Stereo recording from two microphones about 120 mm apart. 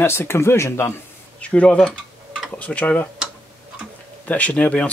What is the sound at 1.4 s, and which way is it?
Speech, 10° left (ahead or behind).